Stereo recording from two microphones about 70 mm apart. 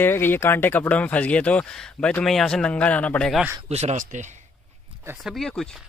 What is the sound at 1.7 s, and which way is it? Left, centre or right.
A man's voice, centre.